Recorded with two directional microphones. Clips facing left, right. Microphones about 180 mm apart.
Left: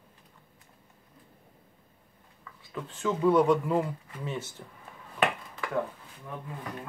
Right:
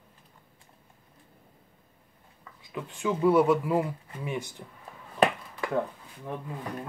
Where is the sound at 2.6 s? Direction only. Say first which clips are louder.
Right 1 dB; 15° right (ahead or behind).